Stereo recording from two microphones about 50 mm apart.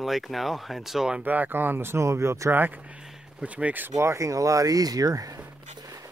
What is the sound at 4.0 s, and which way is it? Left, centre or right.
Speech, right.